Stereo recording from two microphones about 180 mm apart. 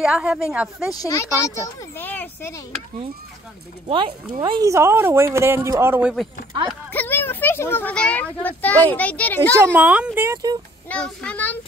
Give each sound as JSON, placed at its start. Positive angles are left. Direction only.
{"t": 0.0, "sound": "speech", "side_deg": -5}
{"t": 0.9, "sound": "a child's voice", "side_deg": 15}
{"t": 3.8, "sound": "speech", "side_deg": -25}
{"t": 6.9, "sound": "a child's voice", "side_deg": 10}
{"t": 9.8, "sound": "speech", "side_deg": -5}
{"t": 10.9, "sound": "a child's voice", "side_deg": 5}